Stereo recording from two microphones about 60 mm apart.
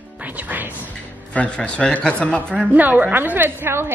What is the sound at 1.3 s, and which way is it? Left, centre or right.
Speech, centre.